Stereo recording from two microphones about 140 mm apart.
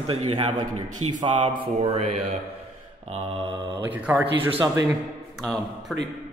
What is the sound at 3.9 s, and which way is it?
Speech, 10° right (ahead or behind).